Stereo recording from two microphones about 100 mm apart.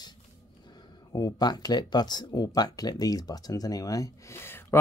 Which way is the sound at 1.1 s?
40° left (ahead or behind).